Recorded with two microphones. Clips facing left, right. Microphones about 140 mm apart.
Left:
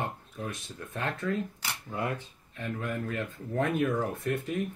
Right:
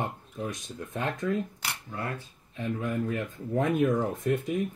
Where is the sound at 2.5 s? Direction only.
15° right (ahead or behind).